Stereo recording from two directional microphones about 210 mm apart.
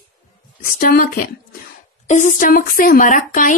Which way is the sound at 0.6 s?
45° left (ahead or behind).